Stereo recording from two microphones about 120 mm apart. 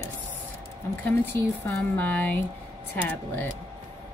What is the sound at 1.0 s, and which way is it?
Speech, 20° left (ahead or behind).